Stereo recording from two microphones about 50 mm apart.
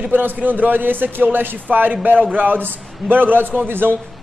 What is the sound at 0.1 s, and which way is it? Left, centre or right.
A man's voice, right.